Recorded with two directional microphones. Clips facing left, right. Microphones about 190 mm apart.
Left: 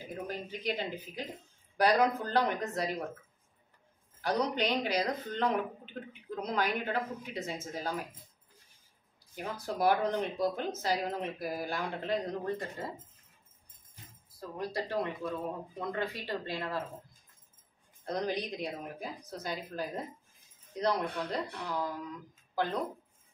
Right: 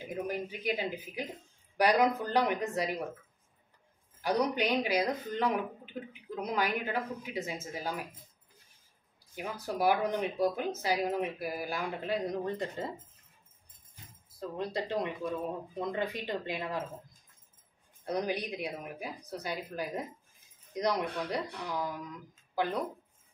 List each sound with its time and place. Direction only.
0.1 s a woman's voice: 10° right (ahead or behind)
4.2 s a woman's voice: 10° right (ahead or behind)
9.3 s a woman's voice: 10° right (ahead or behind)
12.4 s speech: 20° right (ahead or behind)
14.6 s a woman's voice: 20° right (ahead or behind)
18.0 s a woman's voice: 10° right (ahead or behind)